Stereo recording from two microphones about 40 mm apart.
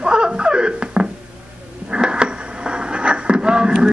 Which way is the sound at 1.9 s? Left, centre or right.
Right.